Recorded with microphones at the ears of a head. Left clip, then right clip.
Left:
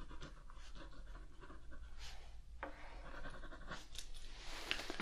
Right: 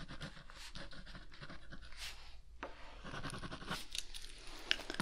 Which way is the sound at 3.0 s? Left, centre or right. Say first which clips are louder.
Right 9 dB; right.